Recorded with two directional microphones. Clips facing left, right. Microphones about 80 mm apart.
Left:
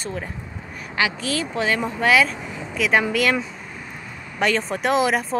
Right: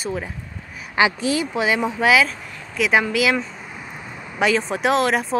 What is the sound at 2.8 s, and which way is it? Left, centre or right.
Speech, centre.